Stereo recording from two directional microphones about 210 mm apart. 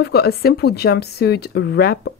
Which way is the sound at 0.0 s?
50° left (ahead or behind).